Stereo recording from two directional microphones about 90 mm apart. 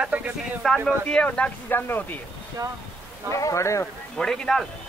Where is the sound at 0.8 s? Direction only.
10° left (ahead or behind).